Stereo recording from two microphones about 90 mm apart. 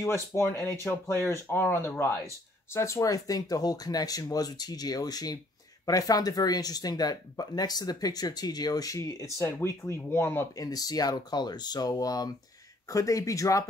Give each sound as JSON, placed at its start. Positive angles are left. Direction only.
{"t": 0.0, "sound": "speech", "side_deg": 30}
{"t": 10.5, "sound": "speech", "side_deg": 45}